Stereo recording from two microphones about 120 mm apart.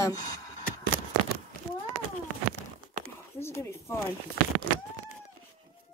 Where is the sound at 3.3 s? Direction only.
20° left (ahead or behind).